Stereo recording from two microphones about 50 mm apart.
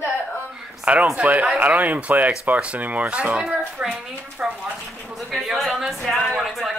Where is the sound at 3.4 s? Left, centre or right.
Centre.